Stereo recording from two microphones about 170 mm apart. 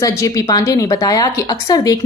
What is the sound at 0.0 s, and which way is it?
A woman's voice, 20° left (ahead or behind).